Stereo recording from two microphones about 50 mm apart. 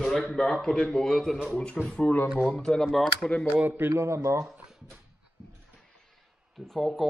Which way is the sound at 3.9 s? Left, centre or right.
Right.